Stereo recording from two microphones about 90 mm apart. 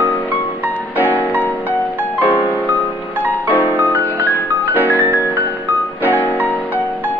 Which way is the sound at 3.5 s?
20° left (ahead or behind).